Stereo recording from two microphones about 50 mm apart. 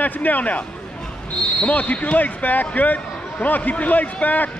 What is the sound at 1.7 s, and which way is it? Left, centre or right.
Speech, left.